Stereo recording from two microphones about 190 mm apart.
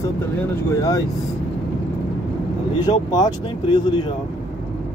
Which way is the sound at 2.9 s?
20° left (ahead or behind).